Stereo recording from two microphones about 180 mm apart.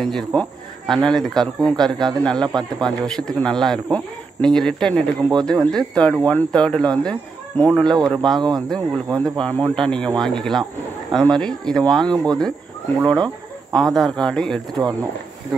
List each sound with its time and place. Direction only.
0.0 s speech: 5° left (ahead or behind)
8.4 s speech: 20° right (ahead or behind)
8.6 s speech: 5° left (ahead or behind)
13.0 s a sound: 20° right (ahead or behind)
13.7 s speech: centre (ahead or behind)